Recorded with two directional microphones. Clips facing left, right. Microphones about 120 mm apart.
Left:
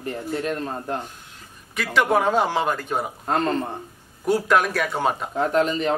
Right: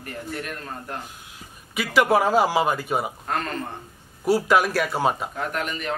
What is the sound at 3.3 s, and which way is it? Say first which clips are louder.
Speech: left 10 dB; 30° left (ahead or behind).